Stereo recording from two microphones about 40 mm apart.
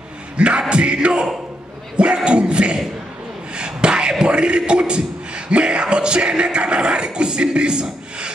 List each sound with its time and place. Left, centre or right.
0.4 s music: right
2.2 s music: right
3.5 s a sound: right
5.5 s music: right